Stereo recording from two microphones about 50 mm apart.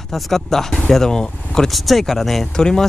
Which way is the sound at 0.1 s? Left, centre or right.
Centre.